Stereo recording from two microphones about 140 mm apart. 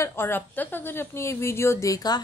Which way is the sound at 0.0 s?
15° left (ahead or behind).